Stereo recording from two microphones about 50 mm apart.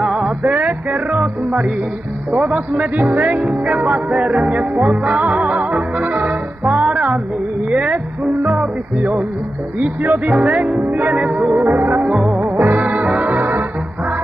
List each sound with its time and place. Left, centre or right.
0.0 s music: centre
0.4 s music: right
2.3 s a man's voice: right
3.3 s music: right
12.0 s music: right